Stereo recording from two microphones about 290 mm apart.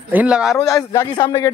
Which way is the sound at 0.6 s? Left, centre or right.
Centre.